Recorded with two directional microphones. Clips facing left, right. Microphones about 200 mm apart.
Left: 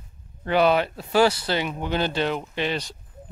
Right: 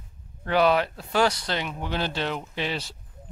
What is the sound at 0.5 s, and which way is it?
Speech, centre (ahead or behind).